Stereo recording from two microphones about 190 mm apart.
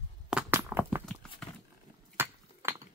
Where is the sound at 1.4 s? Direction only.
5° left (ahead or behind).